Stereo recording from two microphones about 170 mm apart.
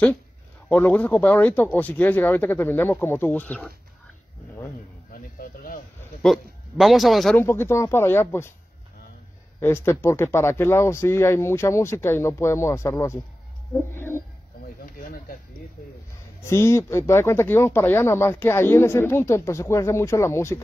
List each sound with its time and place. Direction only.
0.7 s speech: 10° left (ahead or behind)
5.1 s a sound: 55° left (ahead or behind)
6.2 s speech: centre (ahead or behind)
7.3 s speech: 15° left (ahead or behind)
9.6 s speech: 15° left (ahead or behind)
14.8 s a sound: 60° left (ahead or behind)
16.4 s speech: 15° left (ahead or behind)